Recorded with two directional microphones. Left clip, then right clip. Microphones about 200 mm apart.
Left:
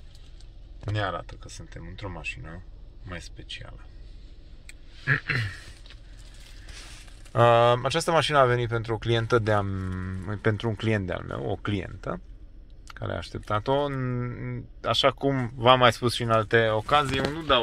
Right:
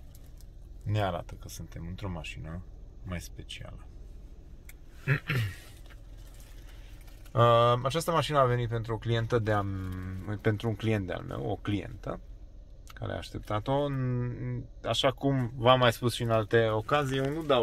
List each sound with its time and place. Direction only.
0.9 s speech: 15° right (ahead or behind)
5.0 s a sound: centre (ahead or behind)
7.3 s speech: 15° left (ahead or behind)